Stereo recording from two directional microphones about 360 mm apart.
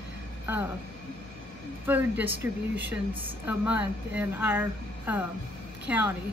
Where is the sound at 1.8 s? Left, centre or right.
Centre.